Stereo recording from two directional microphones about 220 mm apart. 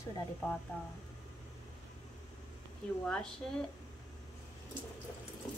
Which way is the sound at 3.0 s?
5° left (ahead or behind).